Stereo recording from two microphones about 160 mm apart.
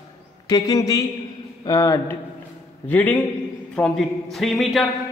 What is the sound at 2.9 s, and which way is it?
A man's voice, 10° left (ahead or behind).